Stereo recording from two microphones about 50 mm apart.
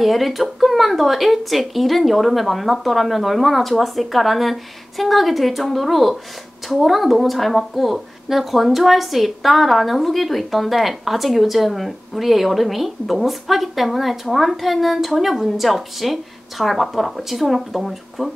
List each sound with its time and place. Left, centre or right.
0.0 s speech: centre